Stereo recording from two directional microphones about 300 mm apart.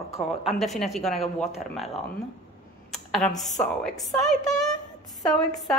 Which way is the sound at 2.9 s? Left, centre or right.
Centre.